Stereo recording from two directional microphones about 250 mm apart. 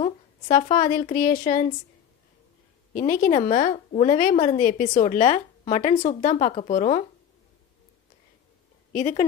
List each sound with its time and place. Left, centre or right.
0.0 s a woman's voice: left
2.9 s a woman's voice: left
8.9 s speech: left